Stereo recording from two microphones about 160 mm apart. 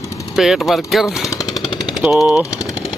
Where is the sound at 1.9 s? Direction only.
Centre (ahead or behind).